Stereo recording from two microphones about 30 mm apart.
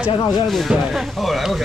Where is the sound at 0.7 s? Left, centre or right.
Right.